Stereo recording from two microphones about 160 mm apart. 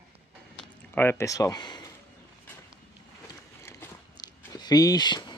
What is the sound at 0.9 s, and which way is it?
Speech, 15° left (ahead or behind).